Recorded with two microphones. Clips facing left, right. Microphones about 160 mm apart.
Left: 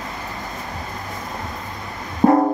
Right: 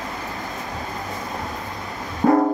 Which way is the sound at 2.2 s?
35° left (ahead or behind).